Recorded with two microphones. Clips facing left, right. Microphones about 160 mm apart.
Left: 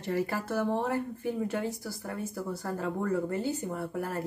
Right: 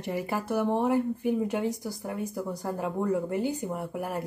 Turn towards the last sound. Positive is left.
turn(degrees=-15)  # may be behind; listen again after turning